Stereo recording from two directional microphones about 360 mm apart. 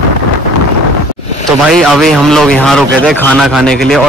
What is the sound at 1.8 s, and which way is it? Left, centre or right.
A man's voice, centre.